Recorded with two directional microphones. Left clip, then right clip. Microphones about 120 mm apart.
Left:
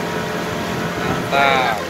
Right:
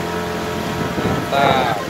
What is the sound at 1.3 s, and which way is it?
Boat, 25° right (ahead or behind).